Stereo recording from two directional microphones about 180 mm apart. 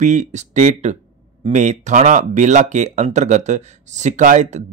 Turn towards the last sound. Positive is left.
turn(degrees=-40)  # may be behind; listen again after turning